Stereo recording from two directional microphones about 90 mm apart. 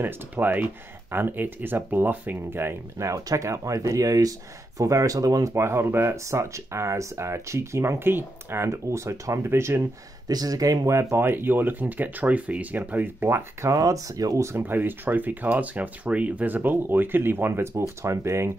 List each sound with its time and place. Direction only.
0.0 s speech: 20° right (ahead or behind); by 5.5 s 40° right (ahead or behind)
5.5 s speech: 30° right (ahead or behind)
10.2 s speech: 45° right (ahead or behind)
14.6 s speech: 20° right (ahead or behind)